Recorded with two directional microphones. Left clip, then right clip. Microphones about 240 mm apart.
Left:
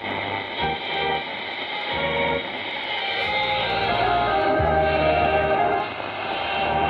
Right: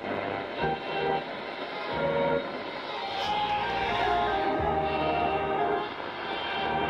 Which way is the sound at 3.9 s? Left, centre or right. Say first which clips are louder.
Left 5 dB; left.